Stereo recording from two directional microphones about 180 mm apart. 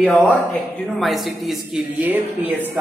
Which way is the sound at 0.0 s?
5° left (ahead or behind).